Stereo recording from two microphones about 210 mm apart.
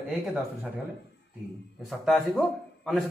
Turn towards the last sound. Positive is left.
turn(degrees=0)  # may be behind; listen again after turning